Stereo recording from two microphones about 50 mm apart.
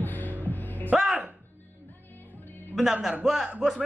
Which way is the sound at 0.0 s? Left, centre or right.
Left.